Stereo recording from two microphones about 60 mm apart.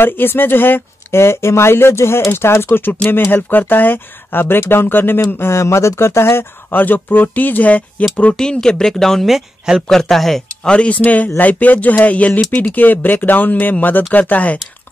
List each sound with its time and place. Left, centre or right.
0.0 s speech: left
2.8 s speech: left
5.2 s speech: left
8.4 s speech: centre
10.7 s speech: left